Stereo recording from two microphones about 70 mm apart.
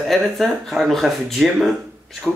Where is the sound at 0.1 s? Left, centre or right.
Centre.